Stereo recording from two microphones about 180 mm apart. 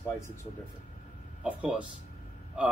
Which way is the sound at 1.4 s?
5° right (ahead or behind).